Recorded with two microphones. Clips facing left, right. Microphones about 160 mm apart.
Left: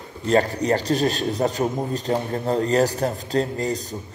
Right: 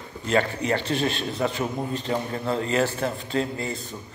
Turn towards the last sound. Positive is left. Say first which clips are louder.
# left 5 dB
turn(degrees=40)  # may be behind; listen again after turning